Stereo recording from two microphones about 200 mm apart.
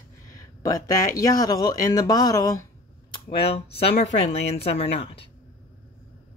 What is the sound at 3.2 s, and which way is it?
Speech, 30° left (ahead or behind).